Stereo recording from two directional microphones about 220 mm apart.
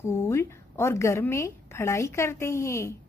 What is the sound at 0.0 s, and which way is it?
A woman's voice, 10° left (ahead or behind).